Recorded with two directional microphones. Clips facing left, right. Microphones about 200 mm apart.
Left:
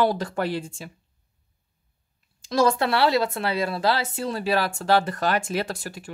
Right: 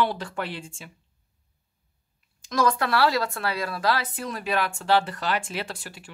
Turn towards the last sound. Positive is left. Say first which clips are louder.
# left 6 dB
turn(degrees=45)  # may be behind; listen again after turning